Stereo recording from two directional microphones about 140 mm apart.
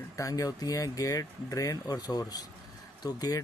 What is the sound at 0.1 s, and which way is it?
Speech, 25° left (ahead or behind).